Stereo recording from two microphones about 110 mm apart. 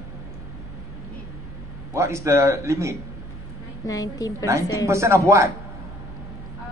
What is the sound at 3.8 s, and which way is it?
Speech, 30° left (ahead or behind).